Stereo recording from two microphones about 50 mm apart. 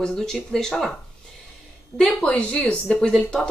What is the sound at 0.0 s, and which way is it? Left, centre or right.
Speech, centre.